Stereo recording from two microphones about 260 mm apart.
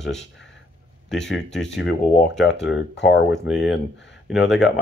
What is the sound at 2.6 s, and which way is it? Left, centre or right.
Speech, left.